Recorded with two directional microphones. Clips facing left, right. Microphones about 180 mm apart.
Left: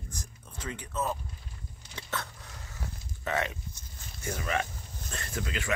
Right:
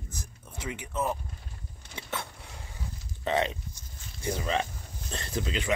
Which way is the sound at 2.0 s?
10° right (ahead or behind).